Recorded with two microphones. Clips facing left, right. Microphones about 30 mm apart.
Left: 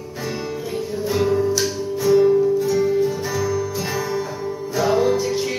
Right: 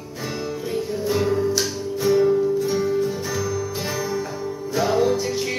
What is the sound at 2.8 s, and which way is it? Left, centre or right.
Music, centre.